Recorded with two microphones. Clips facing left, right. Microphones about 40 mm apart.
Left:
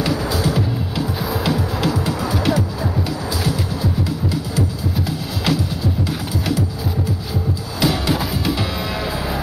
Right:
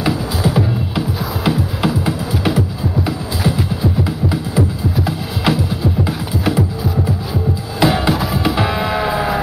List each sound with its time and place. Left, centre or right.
0.0 s music: centre
7.8 s music: right
8.1 s music: centre
8.6 s music: right